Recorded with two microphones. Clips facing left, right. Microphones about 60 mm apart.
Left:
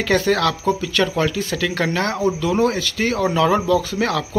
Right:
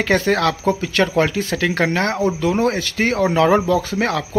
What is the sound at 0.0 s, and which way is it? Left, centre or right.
Speech, right.